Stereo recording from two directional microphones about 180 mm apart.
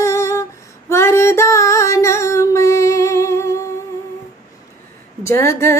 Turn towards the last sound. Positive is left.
turn(degrees=15)  # may be behind; listen again after turning